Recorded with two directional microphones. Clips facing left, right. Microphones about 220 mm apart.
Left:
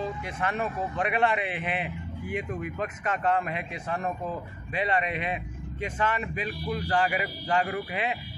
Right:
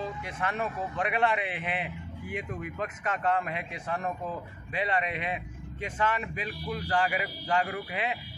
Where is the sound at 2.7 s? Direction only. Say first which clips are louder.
Left 2 dB; 20° left (ahead or behind).